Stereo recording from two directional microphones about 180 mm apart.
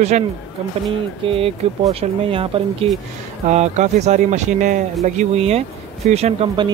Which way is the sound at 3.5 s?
40° right (ahead or behind).